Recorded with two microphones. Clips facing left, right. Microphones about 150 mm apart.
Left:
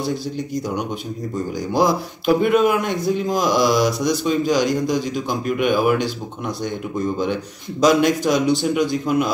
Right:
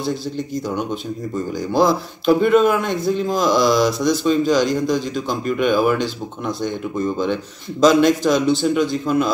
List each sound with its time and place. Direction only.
1.7 s speech: 15° left (ahead or behind)
7.8 s speech: 15° left (ahead or behind)